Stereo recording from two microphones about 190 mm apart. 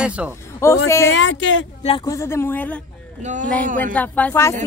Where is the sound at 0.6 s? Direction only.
15° left (ahead or behind).